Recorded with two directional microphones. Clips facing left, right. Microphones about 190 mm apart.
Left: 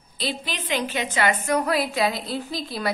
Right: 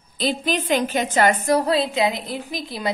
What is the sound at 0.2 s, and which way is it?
A woman's voice, 45° right (ahead or behind).